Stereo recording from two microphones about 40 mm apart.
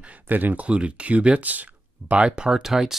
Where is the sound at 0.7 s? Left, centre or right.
Right.